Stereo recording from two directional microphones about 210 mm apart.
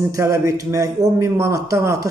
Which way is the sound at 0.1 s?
15° right (ahead or behind).